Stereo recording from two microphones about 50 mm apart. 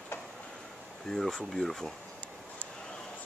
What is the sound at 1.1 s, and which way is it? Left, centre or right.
Speech, centre.